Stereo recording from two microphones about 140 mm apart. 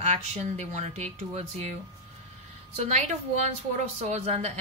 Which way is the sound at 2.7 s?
55° right (ahead or behind).